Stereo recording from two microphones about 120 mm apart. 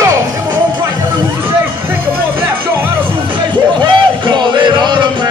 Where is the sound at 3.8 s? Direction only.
40° right (ahead or behind).